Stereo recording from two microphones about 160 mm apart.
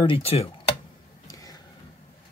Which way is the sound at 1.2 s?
20° left (ahead or behind).